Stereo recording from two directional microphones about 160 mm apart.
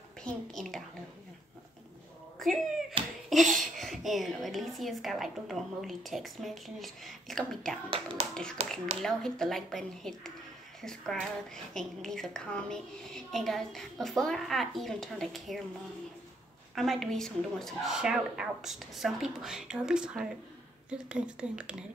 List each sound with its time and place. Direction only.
0.2 s a woman's voice: 5° left (ahead or behind)
2.3 s a sound: centre (ahead or behind)
3.0 s a sound: 35° right (ahead or behind)
3.4 s a woman's voice: centre (ahead or behind)
7.9 s speech: 35° right (ahead or behind)
9.0 s a woman's voice: 5° left (ahead or behind)
16.7 s a woman's voice: centre (ahead or behind)